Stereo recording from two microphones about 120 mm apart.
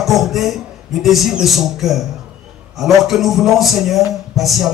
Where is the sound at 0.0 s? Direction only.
Centre (ahead or behind).